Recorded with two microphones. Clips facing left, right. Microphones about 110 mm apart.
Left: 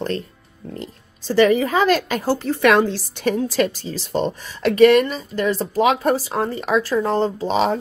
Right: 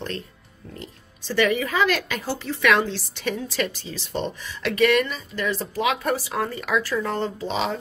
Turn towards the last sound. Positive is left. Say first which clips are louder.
# left 7 dB
turn(degrees=40)  # may be behind; listen again after turning